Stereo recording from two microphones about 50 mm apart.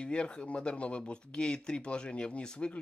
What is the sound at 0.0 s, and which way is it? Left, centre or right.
Speech, centre.